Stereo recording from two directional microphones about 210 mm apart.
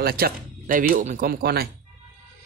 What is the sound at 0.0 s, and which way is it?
Speech, 45° right (ahead or behind).